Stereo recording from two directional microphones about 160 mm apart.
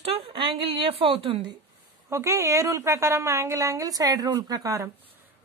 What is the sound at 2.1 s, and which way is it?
A woman's voice, 20° right (ahead or behind).